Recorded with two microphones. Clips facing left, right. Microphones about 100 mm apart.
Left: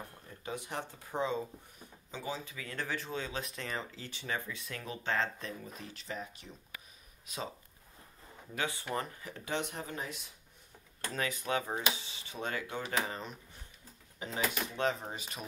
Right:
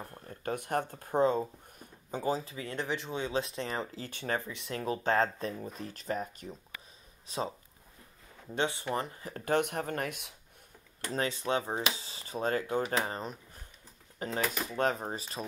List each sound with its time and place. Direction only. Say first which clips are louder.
0.4 s speech: right 7 dB; 50° right (ahead or behind); by 4.1 s 35° right (ahead or behind)
4.1 s speech: right 4 dB; 50° right (ahead or behind)
4.5 s speech: right 8 dB; 30° right (ahead or behind); by 6.5 s 45° right (ahead or behind)
7.3 s speech: right 6 dB; 30° right (ahead or behind)
8.5 s speech: right 4 dB; 20° right (ahead or behind)
9.3 s speech: right 9 dB; 50° right (ahead or behind)
11.1 s speech: right 4 dB; 30° right (ahead or behind)